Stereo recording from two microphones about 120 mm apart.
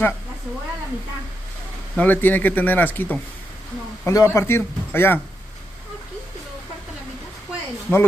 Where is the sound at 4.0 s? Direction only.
25° left (ahead or behind).